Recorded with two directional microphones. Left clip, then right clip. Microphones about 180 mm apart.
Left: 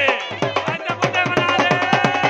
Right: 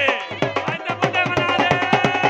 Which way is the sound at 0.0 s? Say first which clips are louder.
Left 1 dB; 5° left (ahead or behind).